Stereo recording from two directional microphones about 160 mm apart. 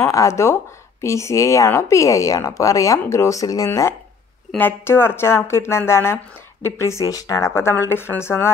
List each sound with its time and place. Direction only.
0.0 s speech: 20° left (ahead or behind)